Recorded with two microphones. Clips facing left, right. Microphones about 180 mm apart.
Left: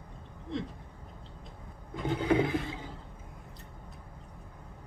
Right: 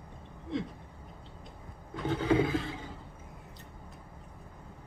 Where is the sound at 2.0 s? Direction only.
15° left (ahead or behind).